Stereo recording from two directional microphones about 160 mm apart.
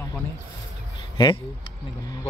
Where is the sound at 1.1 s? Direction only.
30° left (ahead or behind).